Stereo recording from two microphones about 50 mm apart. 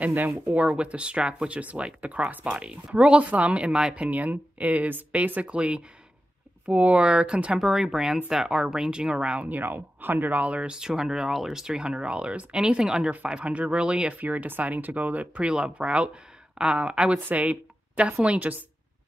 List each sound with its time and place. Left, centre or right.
0.6 s speech: right
4.1 s speech: right
7.5 s speech: centre
9.5 s speech: right
10.4 s speech: right
10.8 s speech: centre
13.3 s speech: right
14.1 s speech: right
17.2 s speech: right